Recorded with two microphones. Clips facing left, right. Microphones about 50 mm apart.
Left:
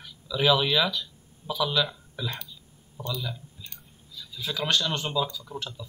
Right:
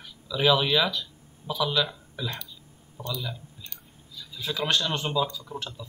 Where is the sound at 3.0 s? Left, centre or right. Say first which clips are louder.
Even; right.